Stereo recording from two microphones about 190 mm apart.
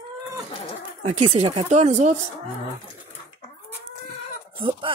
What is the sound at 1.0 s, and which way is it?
Speech, 35° right (ahead or behind).